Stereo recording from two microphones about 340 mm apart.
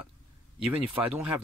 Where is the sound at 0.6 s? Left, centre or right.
Centre.